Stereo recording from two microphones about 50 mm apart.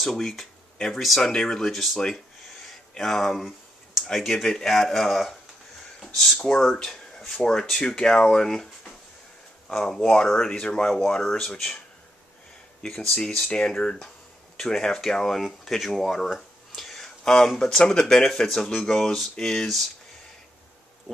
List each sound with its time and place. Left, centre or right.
0.0 s speech: centre
12.8 s speech: centre
13.5 s speech: centre